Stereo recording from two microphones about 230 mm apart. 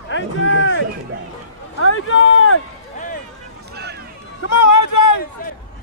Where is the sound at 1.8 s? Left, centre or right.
Left.